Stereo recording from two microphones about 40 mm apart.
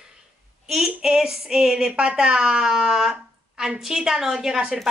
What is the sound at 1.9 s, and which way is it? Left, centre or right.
A woman's voice, right.